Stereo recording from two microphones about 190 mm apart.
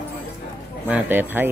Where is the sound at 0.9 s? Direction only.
10° right (ahead or behind).